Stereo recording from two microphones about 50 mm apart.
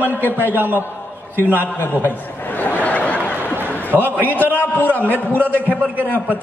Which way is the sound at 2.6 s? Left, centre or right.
Left.